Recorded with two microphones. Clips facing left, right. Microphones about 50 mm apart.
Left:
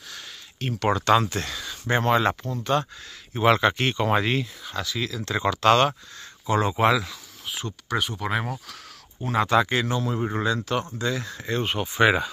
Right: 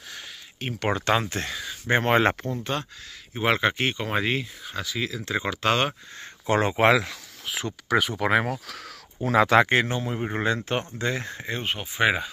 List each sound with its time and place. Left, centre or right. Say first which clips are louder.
0.1 s speech: even; right
1.6 s a sound: right 3 dB; centre
2.0 s speech: even; right
2.5 s speech: left 5 dB; centre
6.4 s speech: right 1 dB; right
7.5 s a sound: right 2 dB; right
8.2 s speech: right 5 dB; right
9.3 s speech: right 3 dB; right
9.7 s speech: right 3 dB; right
9.9 s speech: left 2 dB; right
11.4 s speech: left 6 dB; centre